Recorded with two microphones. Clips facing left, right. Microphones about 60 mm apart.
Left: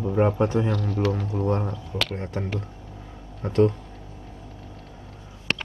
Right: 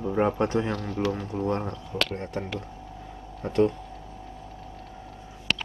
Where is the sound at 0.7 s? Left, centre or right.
Right.